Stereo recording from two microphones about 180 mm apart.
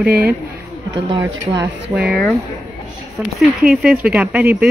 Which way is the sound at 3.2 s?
Centre (ahead or behind).